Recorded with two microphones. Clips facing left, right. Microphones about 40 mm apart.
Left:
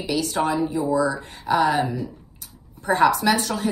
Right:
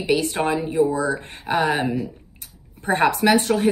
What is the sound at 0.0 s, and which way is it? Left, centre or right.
A woman's voice, right.